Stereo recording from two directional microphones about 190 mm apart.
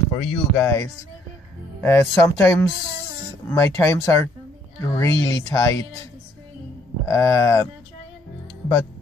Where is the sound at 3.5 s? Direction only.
15° left (ahead or behind).